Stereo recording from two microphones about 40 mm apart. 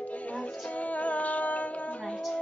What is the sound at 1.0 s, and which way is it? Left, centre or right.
Humming, left.